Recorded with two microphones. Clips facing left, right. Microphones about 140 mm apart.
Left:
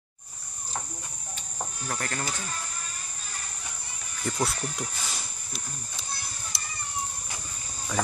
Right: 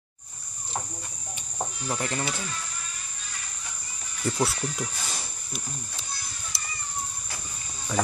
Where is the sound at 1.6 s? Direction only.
15° right (ahead or behind).